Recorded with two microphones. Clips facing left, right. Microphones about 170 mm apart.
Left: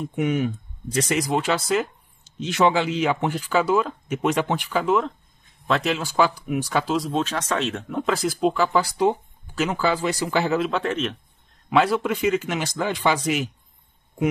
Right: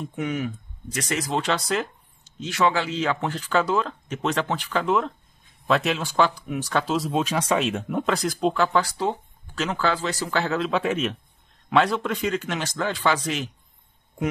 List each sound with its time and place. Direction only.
0.1 s speech: 20° left (ahead or behind); by 1.9 s 5° left (ahead or behind)
2.3 s speech: 20° left (ahead or behind); by 8.8 s 5° left (ahead or behind)
8.8 s speech: 15° left (ahead or behind)
10.8 s speech: 5° right (ahead or behind)
11.7 s speech: 5° left (ahead or behind)